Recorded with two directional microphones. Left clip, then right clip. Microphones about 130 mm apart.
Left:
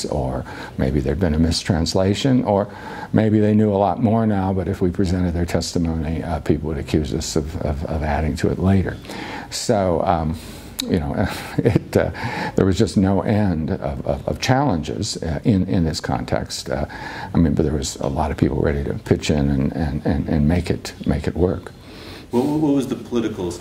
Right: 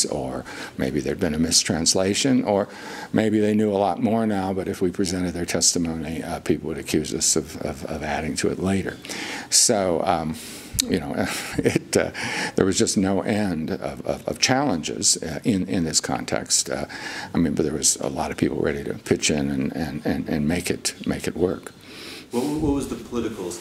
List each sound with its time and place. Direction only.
0.0 s speech: 35° left (ahead or behind)
3.2 s speech: 40° left (ahead or behind)
22.3 s speech: 45° left (ahead or behind)